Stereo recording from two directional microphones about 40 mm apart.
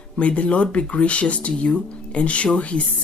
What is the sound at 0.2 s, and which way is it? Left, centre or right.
Speech, left.